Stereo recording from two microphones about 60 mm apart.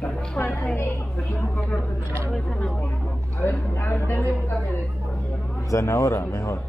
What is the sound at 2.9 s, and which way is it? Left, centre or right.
Speech, left.